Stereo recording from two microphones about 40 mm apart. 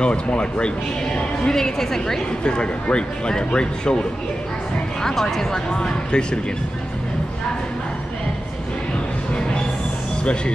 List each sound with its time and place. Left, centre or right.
0.0 s speech: left
1.5 s speech: centre
2.4 s speech: left
5.0 s speech: centre
5.8 s speech: left